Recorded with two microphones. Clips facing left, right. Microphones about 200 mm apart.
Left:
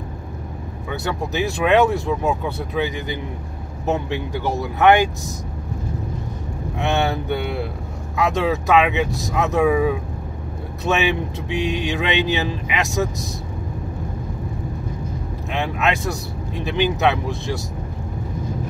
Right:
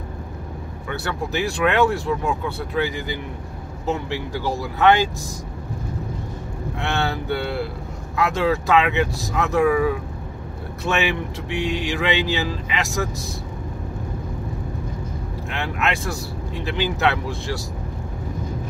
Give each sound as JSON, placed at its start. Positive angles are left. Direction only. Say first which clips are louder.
{"t": 0.9, "sound": "speech", "louder": "left 2 dB", "side_deg": 20}
{"t": 6.8, "sound": "speech", "louder": "left 4 dB", "side_deg": 20}
{"t": 15.5, "sound": "speech", "louder": "left 3 dB", "side_deg": 20}